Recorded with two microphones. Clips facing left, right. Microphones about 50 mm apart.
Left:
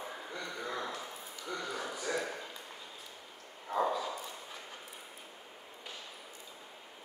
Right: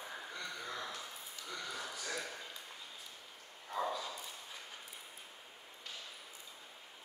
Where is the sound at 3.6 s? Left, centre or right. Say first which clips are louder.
Left 6 dB; left.